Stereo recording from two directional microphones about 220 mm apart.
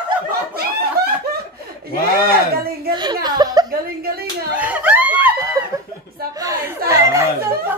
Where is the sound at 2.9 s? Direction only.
20° right (ahead or behind).